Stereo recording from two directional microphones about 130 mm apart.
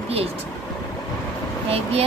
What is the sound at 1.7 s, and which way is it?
Speech, 50° right (ahead or behind).